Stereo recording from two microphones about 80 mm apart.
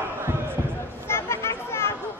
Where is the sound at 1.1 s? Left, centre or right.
Left.